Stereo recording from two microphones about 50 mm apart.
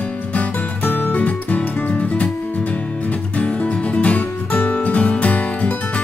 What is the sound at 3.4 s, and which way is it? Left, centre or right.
Music, left.